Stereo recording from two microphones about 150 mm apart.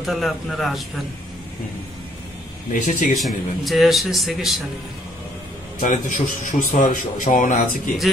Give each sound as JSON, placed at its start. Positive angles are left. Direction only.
{"t": 0.0, "sound": "a man's voice", "side_deg": 0}
{"t": 2.7, "sound": "a man's voice", "side_deg": 60}
{"t": 3.2, "sound": "a man's voice", "side_deg": 0}
{"t": 5.8, "sound": "a man's voice", "side_deg": 60}